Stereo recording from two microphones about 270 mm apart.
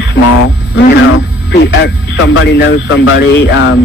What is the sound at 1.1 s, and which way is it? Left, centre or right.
Speech, left.